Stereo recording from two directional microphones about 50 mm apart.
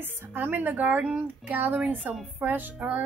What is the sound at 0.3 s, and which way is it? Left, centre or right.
Speech, right.